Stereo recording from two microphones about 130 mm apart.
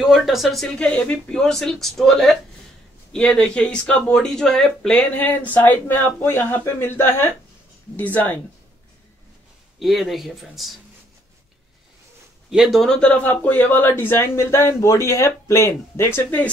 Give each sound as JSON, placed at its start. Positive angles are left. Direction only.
{"t": 0.0, "sound": "speech", "side_deg": 0}
{"t": 9.8, "sound": "speech", "side_deg": 0}
{"t": 12.4, "sound": "speech", "side_deg": 0}